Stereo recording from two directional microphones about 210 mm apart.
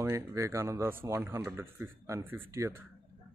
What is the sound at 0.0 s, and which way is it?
Speech, 10° right (ahead or behind).